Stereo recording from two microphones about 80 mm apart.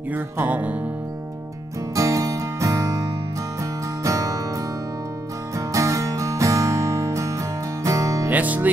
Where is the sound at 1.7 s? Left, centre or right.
Right.